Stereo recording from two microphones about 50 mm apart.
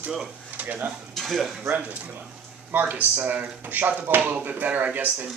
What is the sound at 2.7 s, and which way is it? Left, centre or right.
Speech, right.